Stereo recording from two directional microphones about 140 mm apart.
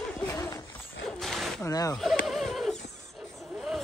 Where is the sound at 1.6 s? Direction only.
25° left (ahead or behind).